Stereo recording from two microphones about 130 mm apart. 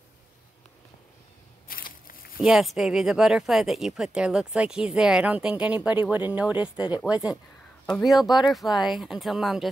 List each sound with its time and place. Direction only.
1.7 s crushing: 90° left
2.4 s speech: centre (ahead or behind)
8.0 s speech: centre (ahead or behind)